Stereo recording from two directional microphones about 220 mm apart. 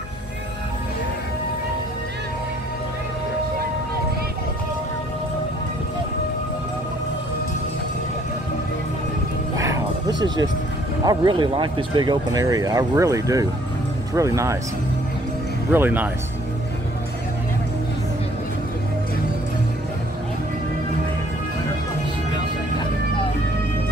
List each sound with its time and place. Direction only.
9.6 s a sound: 15° right (ahead or behind)
11.1 s speech: 20° right (ahead or behind)
15.7 s speech: 10° right (ahead or behind)